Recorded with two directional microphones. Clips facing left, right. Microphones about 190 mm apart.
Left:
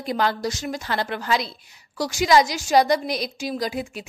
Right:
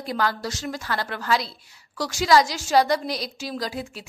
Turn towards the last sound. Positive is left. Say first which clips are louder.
# left 3 dB
turn(degrees=15)  # may be behind; listen again after turning